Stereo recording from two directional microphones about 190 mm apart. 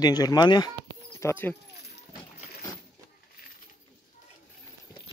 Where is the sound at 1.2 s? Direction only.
10° left (ahead or behind).